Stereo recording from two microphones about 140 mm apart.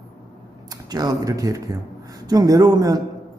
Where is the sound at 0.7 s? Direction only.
30° right (ahead or behind).